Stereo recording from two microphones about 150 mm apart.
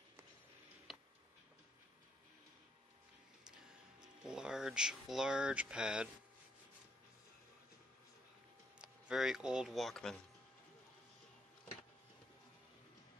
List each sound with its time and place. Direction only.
0.9 s tick-tock: centre (ahead or behind)
4.2 s speech: 5° right (ahead or behind)
8.8 s speech: 5° right (ahead or behind)